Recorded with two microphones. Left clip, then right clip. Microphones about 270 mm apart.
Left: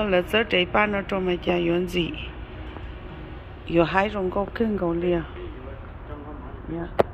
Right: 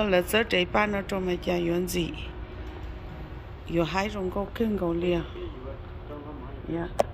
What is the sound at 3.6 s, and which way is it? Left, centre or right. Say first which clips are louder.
Speech: left 7 dB; centre.